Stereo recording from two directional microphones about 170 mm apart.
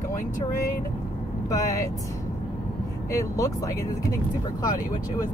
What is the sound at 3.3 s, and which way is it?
Speech, 20° left (ahead or behind).